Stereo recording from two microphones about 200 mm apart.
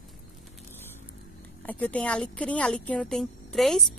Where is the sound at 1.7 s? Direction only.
5° left (ahead or behind).